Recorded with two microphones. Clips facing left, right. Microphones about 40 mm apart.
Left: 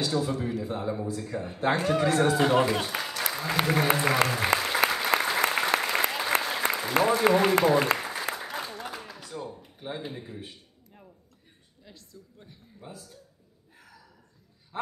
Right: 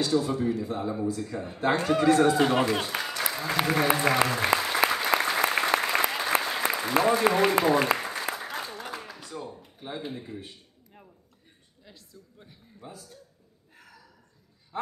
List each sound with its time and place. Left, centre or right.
0.3 s a man's voice: centre
2.9 s applause: centre
3.3 s a man's voice: centre
4.6 s applause: centre
7.6 s a man's voice: centre
7.9 s applause: centre
9.3 s a sound: centre
11.8 s speech: centre